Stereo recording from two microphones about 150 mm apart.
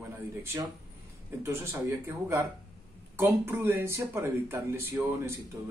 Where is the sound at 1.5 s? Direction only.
15° right (ahead or behind).